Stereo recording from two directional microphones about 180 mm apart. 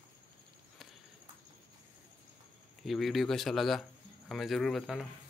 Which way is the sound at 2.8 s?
Centre (ahead or behind).